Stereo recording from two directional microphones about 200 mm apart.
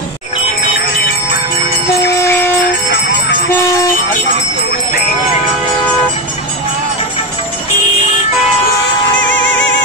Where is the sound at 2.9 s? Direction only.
60° left (ahead or behind).